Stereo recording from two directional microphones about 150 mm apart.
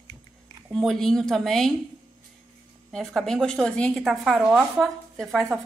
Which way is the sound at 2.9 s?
Centre (ahead or behind).